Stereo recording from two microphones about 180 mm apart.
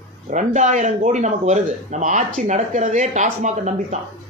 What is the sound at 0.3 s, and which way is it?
Speech, 40° right (ahead or behind).